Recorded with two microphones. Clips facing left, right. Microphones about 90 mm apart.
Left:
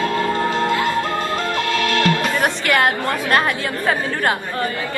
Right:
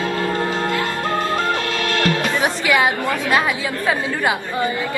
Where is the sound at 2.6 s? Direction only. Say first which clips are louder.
Right 2 dB; 55° left (ahead or behind).